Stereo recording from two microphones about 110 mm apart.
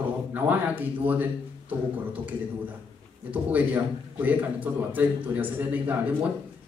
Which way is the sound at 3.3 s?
15° right (ahead or behind).